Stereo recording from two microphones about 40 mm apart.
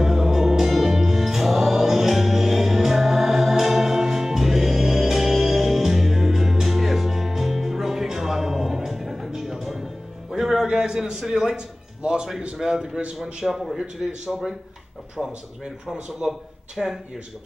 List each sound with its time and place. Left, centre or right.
0.0 s music: centre
10.7 s a sound: centre
11.5 s music: right
12.5 s a man's voice: centre
15.2 s speech: centre